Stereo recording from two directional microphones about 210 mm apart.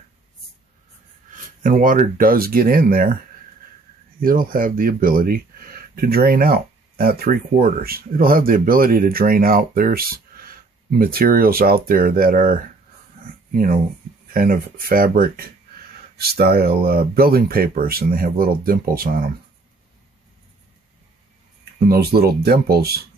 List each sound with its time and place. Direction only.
1.6 s speech: 40° right (ahead or behind)
4.2 s speech: 40° right (ahead or behind)
13.2 s a sound: 40° right (ahead or behind)
14.3 s speech: 45° right (ahead or behind)
21.7 s speech: 45° right (ahead or behind)